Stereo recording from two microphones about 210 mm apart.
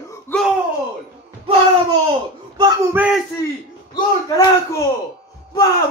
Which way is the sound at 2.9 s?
5° right (ahead or behind).